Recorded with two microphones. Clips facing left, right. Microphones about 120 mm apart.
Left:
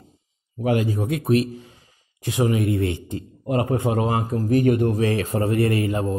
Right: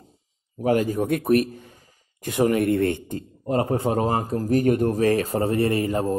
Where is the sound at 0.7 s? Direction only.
45° right (ahead or behind).